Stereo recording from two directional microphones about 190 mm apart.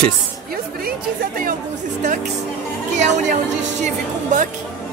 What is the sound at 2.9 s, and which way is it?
A woman's voice, 40° right (ahead or behind).